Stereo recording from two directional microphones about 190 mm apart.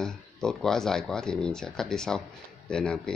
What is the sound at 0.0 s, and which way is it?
Speech, 5° left (ahead or behind).